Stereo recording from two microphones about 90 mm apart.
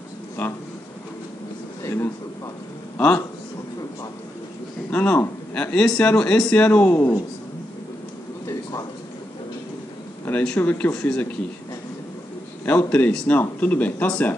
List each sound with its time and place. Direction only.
0.4 s speech: 20° left (ahead or behind)
1.8 s a man's voice: 30° left (ahead or behind)
4.9 s speech: 20° left (ahead or behind)
10.3 s a sound: 15° left (ahead or behind)
10.6 s speech: 15° left (ahead or behind)
12.6 s speech: 15° left (ahead or behind)